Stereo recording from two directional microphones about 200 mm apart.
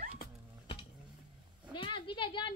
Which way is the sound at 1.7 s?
25° left (ahead or behind).